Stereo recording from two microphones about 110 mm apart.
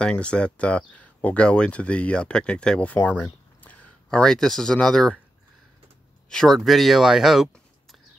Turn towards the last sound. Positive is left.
turn(degrees=-5)  # may be behind; listen again after turning